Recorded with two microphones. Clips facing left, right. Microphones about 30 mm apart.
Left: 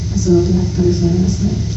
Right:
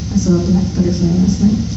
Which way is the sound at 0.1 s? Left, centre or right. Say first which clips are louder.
Left 1 dB; right.